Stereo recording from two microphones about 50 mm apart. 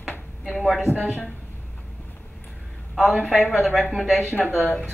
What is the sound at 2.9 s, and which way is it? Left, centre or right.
Speech, centre.